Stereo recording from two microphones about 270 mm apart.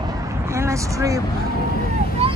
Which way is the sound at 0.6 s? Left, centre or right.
Centre.